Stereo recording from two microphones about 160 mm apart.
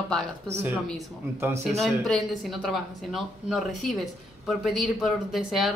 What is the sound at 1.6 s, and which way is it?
A woman's voice, centre (ahead or behind).